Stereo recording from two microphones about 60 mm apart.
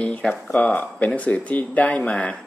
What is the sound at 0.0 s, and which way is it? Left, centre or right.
A woman's voice, left.